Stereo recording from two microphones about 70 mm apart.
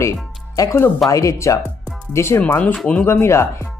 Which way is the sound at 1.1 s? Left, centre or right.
Left.